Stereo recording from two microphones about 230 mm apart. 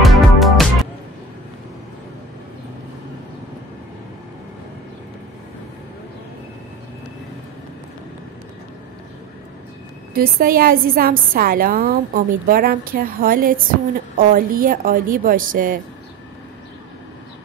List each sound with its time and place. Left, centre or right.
0.0 s music: centre
10.1 s a woman's voice: right